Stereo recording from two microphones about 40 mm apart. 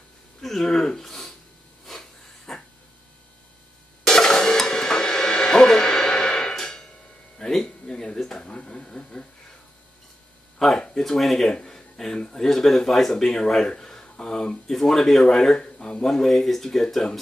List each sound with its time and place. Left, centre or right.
0.4 s speech: centre
1.9 s hiss: centre
4.0 s cymbal: centre
6.5 s a sound: centre
10.8 s a sound: left
11.1 s speech: centre